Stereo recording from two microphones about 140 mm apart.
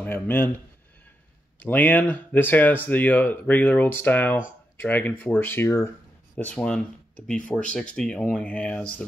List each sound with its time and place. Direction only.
0.0 s speech: 15° left (ahead or behind)
1.6 s speech: 10° left (ahead or behind)
6.3 s speech: 10° left (ahead or behind)